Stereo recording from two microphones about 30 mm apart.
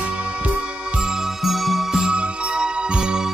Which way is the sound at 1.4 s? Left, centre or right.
Centre.